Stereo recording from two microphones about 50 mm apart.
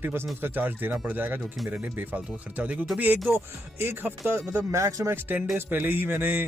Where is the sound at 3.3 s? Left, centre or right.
Right.